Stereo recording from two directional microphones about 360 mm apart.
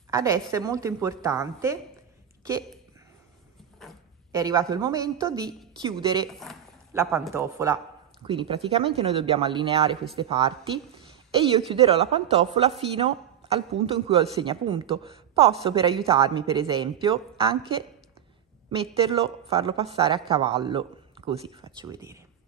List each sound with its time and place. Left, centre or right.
0.1 s a woman's voice: centre
3.8 s a sound: centre
4.3 s a woman's voice: centre